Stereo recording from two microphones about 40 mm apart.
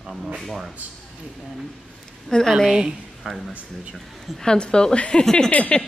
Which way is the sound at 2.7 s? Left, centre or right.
Centre.